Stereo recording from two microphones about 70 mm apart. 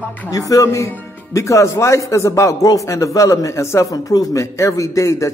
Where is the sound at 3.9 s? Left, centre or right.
Left.